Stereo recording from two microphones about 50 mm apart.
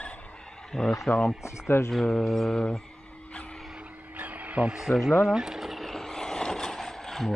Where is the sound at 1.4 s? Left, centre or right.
Left.